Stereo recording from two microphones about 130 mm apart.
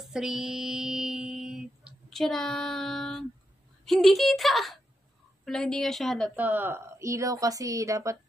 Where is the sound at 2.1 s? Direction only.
5° left (ahead or behind).